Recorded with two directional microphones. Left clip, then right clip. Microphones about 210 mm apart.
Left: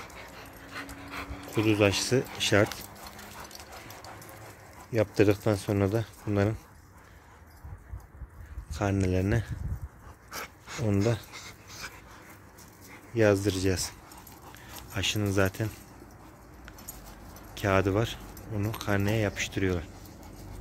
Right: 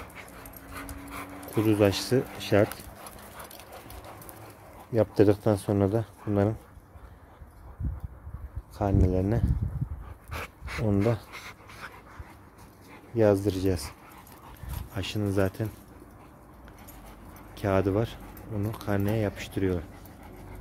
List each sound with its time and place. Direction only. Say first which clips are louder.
0.7 s dog: left 1 dB; 60° right (ahead or behind)
1.6 s speech: right 1 dB; 20° right (ahead or behind)
4.9 s speech: right 2 dB; 20° right (ahead or behind)
8.7 s speech: right 2 dB; 10° right (ahead or behind)
10.3 s dog: right 2 dB; 20° right (ahead or behind)
13.1 s speech: right 1 dB; 10° right (ahead or behind)
15.0 s speech: left 1 dB; 10° right (ahead or behind)
17.6 s speech: even; 10° right (ahead or behind)